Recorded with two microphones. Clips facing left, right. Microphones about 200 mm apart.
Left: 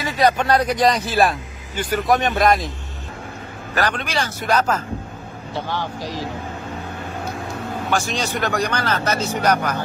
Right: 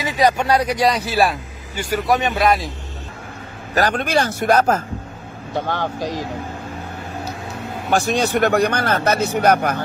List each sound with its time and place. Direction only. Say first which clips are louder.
0.0 s speech: right 1 dB; 15° right (ahead or behind)
3.7 s speech: right 4 dB; 40° right (ahead or behind)
5.9 s speech: right 4 dB; 20° right (ahead or behind)
8.1 s speech: right 6 dB; 60° right (ahead or behind)